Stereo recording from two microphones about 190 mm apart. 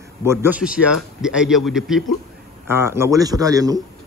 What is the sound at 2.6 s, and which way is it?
A man's voice, 10° right (ahead or behind).